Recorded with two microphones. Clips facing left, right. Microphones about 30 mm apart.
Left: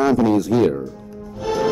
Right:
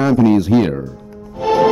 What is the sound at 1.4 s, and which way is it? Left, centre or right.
Music, right.